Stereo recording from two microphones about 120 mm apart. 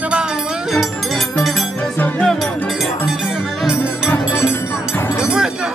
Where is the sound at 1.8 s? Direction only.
10° left (ahead or behind).